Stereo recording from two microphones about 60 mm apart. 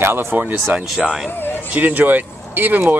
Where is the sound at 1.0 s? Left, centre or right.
Centre.